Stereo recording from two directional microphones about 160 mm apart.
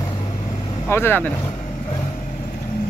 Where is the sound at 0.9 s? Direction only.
15° left (ahead or behind).